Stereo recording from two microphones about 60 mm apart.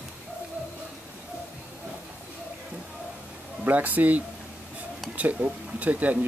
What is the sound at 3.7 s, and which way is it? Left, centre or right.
Speech, right.